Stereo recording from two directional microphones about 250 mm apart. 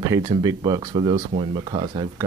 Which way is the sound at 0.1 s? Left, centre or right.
Centre.